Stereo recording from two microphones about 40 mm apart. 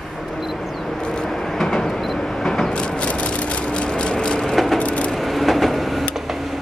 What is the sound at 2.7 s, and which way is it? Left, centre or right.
Vehicle, left.